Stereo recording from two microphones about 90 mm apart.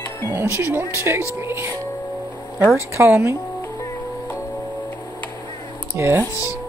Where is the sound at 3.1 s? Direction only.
20° right (ahead or behind).